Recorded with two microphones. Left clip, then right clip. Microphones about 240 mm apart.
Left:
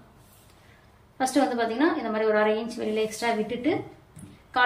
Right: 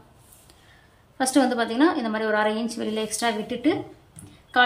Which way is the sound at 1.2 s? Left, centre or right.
Centre.